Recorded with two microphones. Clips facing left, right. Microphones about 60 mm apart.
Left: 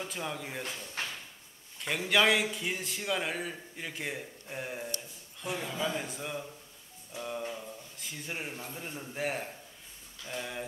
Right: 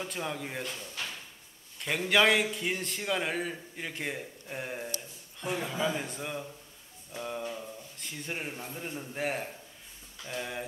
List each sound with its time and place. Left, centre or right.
0.1 s a man's voice: centre
1.0 s drawer open or close: left
1.8 s a man's voice: centre